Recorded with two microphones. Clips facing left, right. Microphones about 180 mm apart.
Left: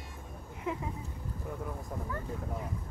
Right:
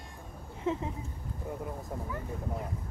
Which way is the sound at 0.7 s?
25° right (ahead or behind).